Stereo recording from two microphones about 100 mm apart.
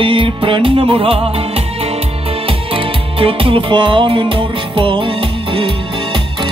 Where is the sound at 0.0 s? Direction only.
55° right (ahead or behind); by 2.0 s 75° right (ahead or behind).